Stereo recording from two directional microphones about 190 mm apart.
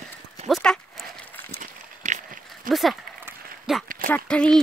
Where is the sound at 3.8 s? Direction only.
45° right (ahead or behind).